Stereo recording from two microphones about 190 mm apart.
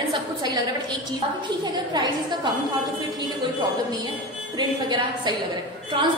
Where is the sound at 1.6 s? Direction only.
20° right (ahead or behind).